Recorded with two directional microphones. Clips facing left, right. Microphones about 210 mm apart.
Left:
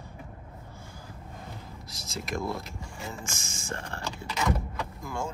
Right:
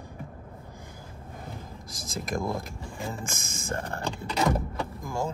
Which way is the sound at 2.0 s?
50° right (ahead or behind).